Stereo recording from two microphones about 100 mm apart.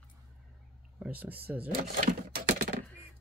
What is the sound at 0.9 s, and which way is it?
Speech, 15° right (ahead or behind).